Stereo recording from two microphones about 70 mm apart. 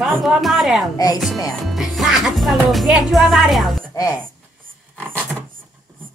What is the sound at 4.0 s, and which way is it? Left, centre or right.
Speech, left.